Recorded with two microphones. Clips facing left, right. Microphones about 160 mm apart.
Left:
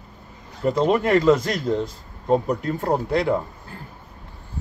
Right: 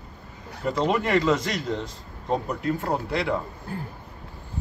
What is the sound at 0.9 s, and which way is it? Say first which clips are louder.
Speech: left 5 dB; 50° left (ahead or behind).